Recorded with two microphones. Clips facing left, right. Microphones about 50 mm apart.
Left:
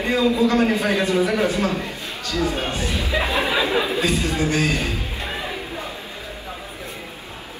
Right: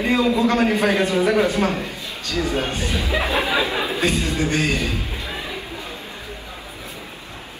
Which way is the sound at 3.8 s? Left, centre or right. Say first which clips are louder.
Even; right.